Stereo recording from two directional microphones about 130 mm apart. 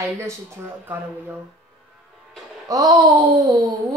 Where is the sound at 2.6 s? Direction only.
25° right (ahead or behind).